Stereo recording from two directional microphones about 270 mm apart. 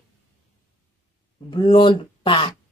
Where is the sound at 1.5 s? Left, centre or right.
Centre.